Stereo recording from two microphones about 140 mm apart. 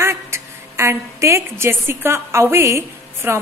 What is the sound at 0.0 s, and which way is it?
A woman's voice, 20° right (ahead or behind).